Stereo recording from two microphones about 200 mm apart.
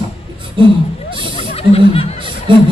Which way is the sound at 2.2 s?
25° right (ahead or behind).